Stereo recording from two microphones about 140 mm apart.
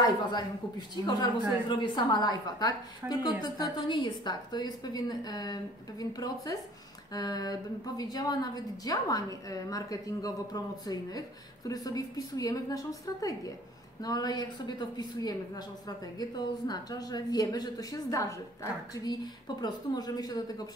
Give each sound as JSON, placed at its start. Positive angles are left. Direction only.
{"t": 0.0, "sound": "a woman's voice", "side_deg": 30}